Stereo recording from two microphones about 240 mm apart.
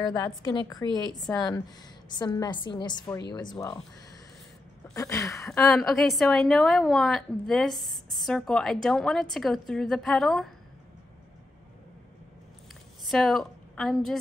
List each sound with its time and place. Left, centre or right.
0.0 s a woman's voice: centre
4.9 s a woman's voice: centre
5.7 s a woman's voice: centre
13.0 s a woman's voice: centre